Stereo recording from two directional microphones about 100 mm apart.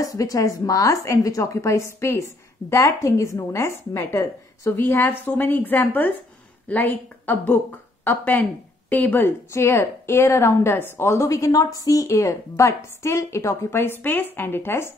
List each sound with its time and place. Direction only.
0.0 s a woman's voice: 35° left (ahead or behind)